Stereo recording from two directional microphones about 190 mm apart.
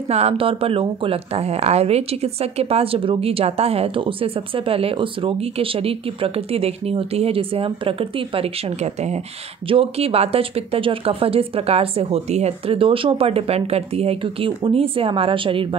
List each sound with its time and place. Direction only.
0.1 s speech: 35° right (ahead or behind)